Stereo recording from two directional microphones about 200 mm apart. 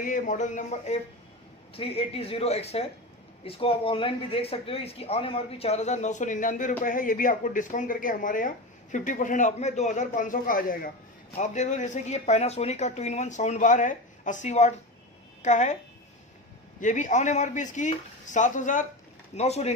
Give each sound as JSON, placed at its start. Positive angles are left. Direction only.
{"t": 0.0, "sound": "speech", "side_deg": 40}
{"t": 16.8, "sound": "speech", "side_deg": 40}